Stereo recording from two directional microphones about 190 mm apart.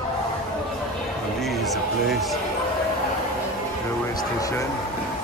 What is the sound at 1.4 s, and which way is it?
Music, centre (ahead or behind).